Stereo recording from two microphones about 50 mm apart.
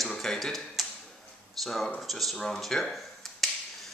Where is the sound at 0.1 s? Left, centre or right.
Centre.